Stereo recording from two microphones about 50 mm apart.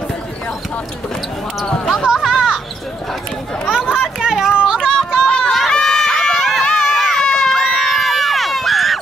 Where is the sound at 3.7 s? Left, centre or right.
Centre.